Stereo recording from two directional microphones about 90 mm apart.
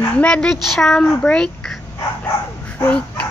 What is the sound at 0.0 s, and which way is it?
Speech, 15° left (ahead or behind).